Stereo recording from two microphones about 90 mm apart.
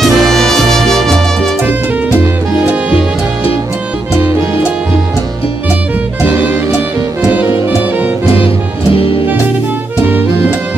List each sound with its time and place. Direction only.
0.0 s music: 5° left (ahead or behind)
1.7 s music: 20° right (ahead or behind)
6.2 s music: 25° right (ahead or behind)